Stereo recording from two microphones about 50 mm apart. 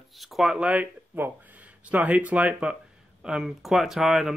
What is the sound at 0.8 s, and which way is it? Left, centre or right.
Speech, right.